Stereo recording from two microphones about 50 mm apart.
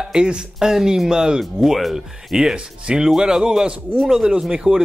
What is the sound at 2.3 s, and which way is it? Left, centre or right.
Speech, centre.